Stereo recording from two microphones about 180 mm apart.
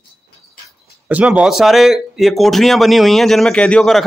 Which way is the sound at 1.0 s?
10° right (ahead or behind).